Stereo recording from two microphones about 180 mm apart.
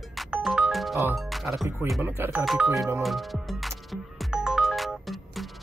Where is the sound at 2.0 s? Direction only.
15° right (ahead or behind).